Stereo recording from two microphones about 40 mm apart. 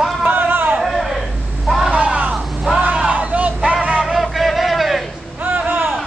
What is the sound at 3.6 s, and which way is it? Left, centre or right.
Music, right.